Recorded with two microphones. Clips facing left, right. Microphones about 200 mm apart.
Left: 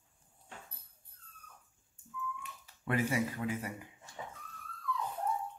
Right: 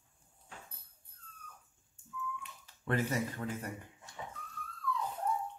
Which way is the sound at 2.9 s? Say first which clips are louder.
Left 1 dB; 10° left (ahead or behind).